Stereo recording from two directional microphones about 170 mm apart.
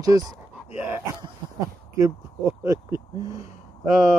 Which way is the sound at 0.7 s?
10° right (ahead or behind).